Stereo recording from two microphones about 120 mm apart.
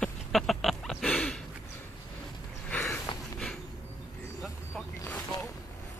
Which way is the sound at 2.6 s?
10° left (ahead or behind).